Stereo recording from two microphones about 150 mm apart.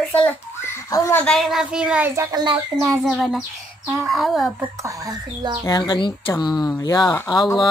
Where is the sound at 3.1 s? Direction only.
Centre (ahead or behind).